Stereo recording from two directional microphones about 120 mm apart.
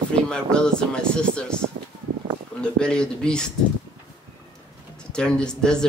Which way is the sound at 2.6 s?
5° left (ahead or behind).